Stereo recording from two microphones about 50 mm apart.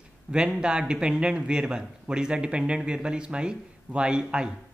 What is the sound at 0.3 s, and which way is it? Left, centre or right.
Speech, centre.